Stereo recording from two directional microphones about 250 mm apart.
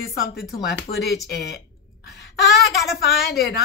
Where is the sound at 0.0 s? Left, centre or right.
Left.